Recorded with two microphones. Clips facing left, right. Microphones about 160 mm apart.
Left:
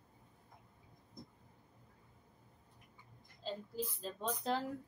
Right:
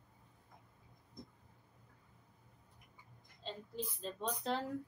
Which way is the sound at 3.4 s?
5° left (ahead or behind).